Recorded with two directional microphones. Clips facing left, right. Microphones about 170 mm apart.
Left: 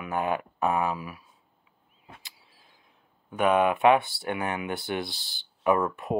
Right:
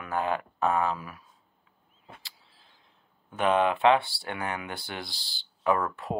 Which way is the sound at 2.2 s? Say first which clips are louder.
Left 1 dB; 15° left (ahead or behind).